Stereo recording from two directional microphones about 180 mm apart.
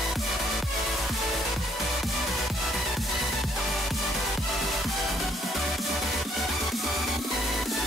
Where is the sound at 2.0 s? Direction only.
Centre (ahead or behind).